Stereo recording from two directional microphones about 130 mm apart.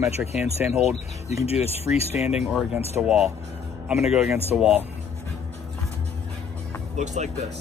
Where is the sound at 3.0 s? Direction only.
5° right (ahead or behind).